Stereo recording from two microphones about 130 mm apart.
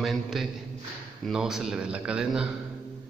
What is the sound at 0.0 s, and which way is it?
A man's voice, centre (ahead or behind).